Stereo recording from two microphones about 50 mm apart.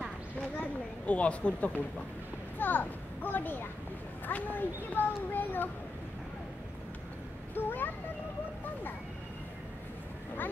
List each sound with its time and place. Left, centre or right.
0.6 s a sound: left
2.6 s a child's voice: left
7.5 s a child's voice: left